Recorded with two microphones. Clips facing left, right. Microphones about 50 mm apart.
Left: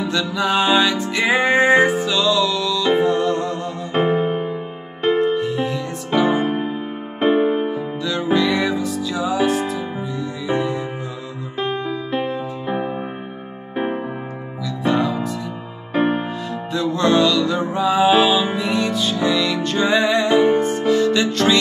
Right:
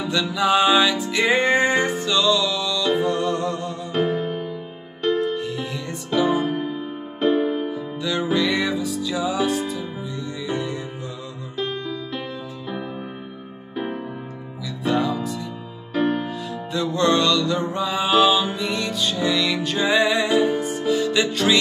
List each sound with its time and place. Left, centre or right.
0.1 s music: centre
3.9 s music: left
5.3 s music: centre
6.0 s music: left
8.4 s music: centre
11.5 s music: left
14.8 s music: centre
15.9 s music: left
16.7 s music: centre
20.2 s music: left
20.6 s music: centre